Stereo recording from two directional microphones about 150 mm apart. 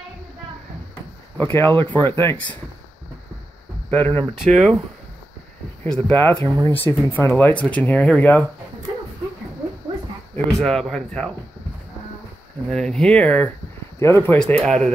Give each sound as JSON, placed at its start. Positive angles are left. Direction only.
{"t": 1.4, "sound": "speech", "side_deg": 15}
{"t": 3.9, "sound": "speech", "side_deg": 10}
{"t": 6.0, "sound": "speech", "side_deg": 10}
{"t": 10.3, "sound": "speech", "side_deg": 5}
{"t": 12.6, "sound": "speech", "side_deg": 0}
{"t": 14.4, "sound": "speech", "side_deg": 5}